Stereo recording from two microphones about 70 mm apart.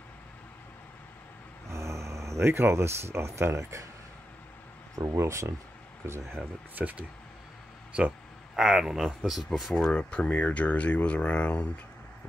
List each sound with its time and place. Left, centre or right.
1.7 s speech: right
5.1 s speech: right
6.7 s speech: right
8.5 s speech: centre
9.8 s speech: centre